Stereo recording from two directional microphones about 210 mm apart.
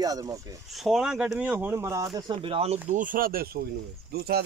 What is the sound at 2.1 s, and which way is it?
Speech, 25° right (ahead or behind).